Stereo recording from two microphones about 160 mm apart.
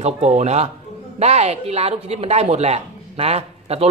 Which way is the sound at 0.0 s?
40° right (ahead or behind).